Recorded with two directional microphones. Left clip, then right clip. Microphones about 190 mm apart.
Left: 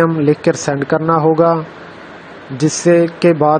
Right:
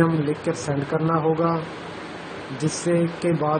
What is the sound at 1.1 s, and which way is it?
Speech, 40° left (ahead or behind).